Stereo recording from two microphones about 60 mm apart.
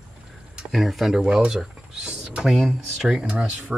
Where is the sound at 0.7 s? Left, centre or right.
Centre.